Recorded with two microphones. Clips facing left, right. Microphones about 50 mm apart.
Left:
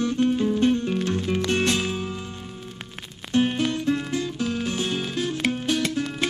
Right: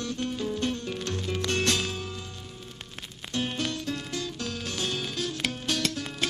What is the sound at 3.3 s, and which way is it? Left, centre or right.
Music, left.